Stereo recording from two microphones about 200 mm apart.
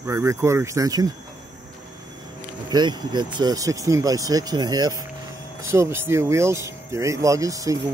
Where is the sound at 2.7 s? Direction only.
20° right (ahead or behind).